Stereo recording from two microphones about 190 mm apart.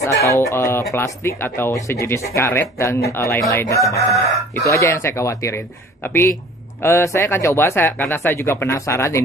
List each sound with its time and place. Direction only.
0.0 s speech: 15° left (ahead or behind)